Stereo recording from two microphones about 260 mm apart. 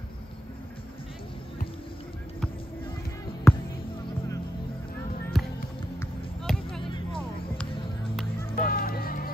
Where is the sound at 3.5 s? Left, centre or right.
Centre.